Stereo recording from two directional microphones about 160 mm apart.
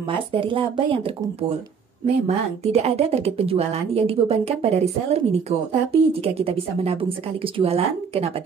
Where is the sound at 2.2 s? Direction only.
40° right (ahead or behind).